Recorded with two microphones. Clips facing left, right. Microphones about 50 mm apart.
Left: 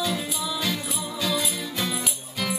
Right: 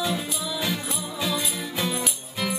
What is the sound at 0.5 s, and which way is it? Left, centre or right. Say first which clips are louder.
Music: right 2 dB; centre.